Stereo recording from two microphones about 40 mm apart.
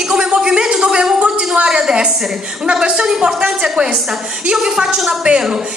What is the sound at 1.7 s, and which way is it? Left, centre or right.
A woman's voice, centre.